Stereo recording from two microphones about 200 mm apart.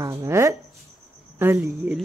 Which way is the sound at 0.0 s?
15° right (ahead or behind).